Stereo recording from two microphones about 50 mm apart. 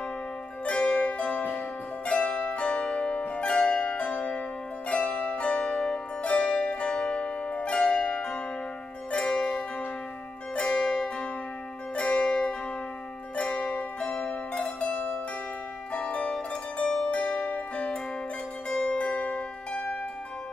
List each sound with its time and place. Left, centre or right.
0.7 s music: centre
2.0 s zither: left
4.8 s pizzicato: left
6.2 s zither: centre
10.5 s music: centre
13.4 s zither: left
14.1 s music: centre
15.9 s zither: left
17.0 s music: left
18.8 s pizzicato: left